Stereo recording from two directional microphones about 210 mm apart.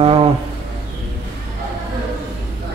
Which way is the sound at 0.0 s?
25° right (ahead or behind).